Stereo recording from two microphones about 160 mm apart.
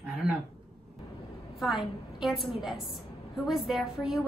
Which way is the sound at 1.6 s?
Centre (ahead or behind).